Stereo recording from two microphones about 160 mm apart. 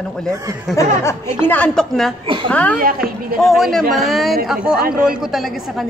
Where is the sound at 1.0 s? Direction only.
15° left (ahead or behind).